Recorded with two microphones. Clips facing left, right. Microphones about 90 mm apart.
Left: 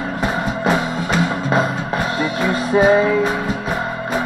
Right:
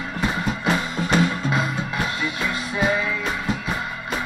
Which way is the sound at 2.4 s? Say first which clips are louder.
Left 10 dB; 40° left (ahead or behind).